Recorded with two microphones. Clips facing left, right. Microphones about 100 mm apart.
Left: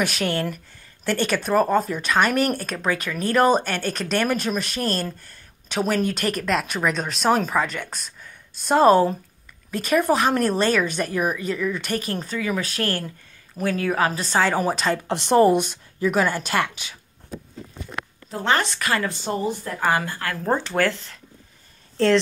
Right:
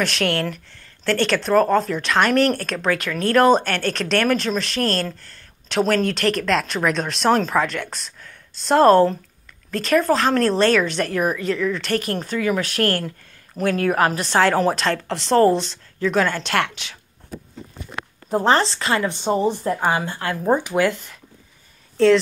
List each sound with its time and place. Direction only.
0.0 s a woman's voice: 5° left (ahead or behind)
15.0 s speech: 20° left (ahead or behind)
18.3 s speech: 35° right (ahead or behind); by 21.2 s 15° right (ahead or behind)
21.9 s speech: centre (ahead or behind)